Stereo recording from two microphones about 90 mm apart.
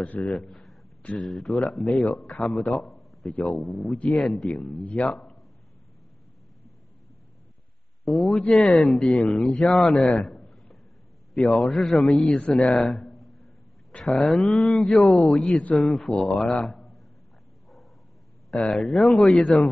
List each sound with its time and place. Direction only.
0.0 s a man's voice: 5° left (ahead or behind)
4.7 s speech: 15° left (ahead or behind)
5.1 s a sound: centre (ahead or behind)
8.0 s a man's voice: centre (ahead or behind)
12.7 s a sound: centre (ahead or behind)
13.9 s speech: centre (ahead or behind)
18.7 s speech: centre (ahead or behind)